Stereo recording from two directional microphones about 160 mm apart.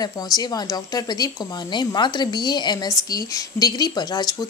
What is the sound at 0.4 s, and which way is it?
Speech, 25° left (ahead or behind).